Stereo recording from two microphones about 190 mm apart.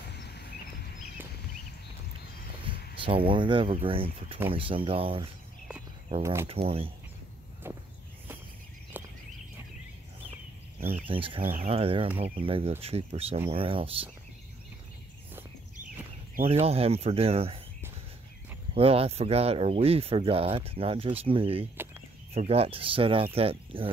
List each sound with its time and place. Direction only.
0.1 s vehicle: 60° left (ahead or behind)
2.7 s a sound: 25° right (ahead or behind)
3.0 s speech: 30° right (ahead or behind)
6.2 s speech: 15° right (ahead or behind)
6.5 s speech: 30° right (ahead or behind)
7.7 s walk: 10° right (ahead or behind)
9.0 s a sound: 10° right (ahead or behind)
10.8 s a sound: 10° right (ahead or behind)
11.1 s speech: 30° right (ahead or behind)
16.4 s speech: 30° right (ahead or behind)
18.8 s speech: 30° right (ahead or behind)